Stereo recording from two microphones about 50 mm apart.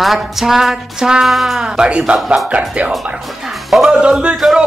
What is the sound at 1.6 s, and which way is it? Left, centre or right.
Speech, centre.